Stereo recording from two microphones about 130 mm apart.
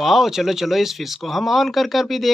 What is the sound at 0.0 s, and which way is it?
Speech, centre (ahead or behind).